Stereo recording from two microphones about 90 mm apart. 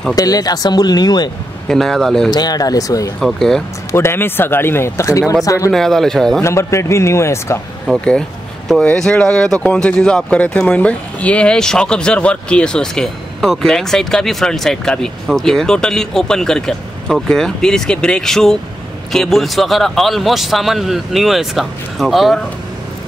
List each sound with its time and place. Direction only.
0.1 s speech: 45° left (ahead or behind)
1.7 s speech: 5° left (ahead or behind)
2.3 s speech: 45° left (ahead or behind)
3.2 s speech: 5° left (ahead or behind)
3.9 s a man's voice: 30° left (ahead or behind)
5.7 s speech: 5° left (ahead or behind)
6.4 s a man's voice: 35° left (ahead or behind)
7.8 s speech: 5° left (ahead or behind)